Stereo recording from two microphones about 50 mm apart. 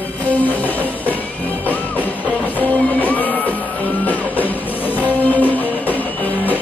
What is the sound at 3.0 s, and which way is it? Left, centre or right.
Music, left.